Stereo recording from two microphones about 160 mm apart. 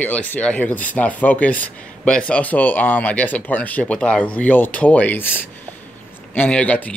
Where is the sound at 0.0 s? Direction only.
10° left (ahead or behind).